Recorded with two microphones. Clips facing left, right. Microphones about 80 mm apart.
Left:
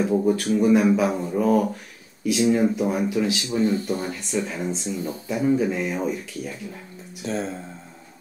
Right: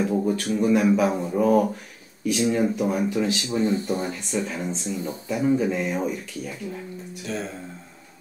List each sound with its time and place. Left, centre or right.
0.1 s speech: centre
2.2 s speech: centre
3.5 s speech: right
4.3 s speech: centre
7.2 s speech: left